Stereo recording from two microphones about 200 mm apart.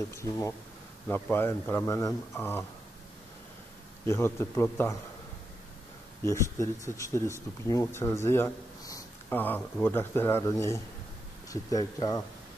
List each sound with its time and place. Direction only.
0.2 s speech: 15° left (ahead or behind)
4.1 s speech: 15° left (ahead or behind)
6.2 s speech: 15° left (ahead or behind)